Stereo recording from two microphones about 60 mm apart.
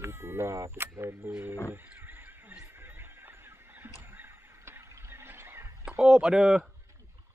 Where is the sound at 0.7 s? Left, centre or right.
Right.